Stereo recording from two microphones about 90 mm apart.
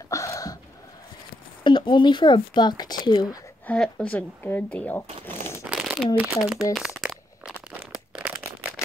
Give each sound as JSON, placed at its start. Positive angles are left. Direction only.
{"t": 0.1, "sound": "a sound", "side_deg": 35}
{"t": 1.6, "sound": "speech", "side_deg": 60}
{"t": 3.6, "sound": "a woman's voice", "side_deg": 10}
{"t": 5.7, "sound": "crumpling", "side_deg": -5}
{"t": 6.1, "sound": "speech", "side_deg": -15}
{"t": 7.4, "sound": "a sound", "side_deg": -10}
{"t": 8.8, "sound": "rattle", "side_deg": 35}